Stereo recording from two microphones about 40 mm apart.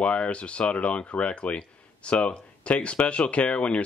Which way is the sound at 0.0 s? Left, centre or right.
Left.